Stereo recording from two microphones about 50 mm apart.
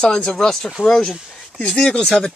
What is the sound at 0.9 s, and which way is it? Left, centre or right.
Speech, centre.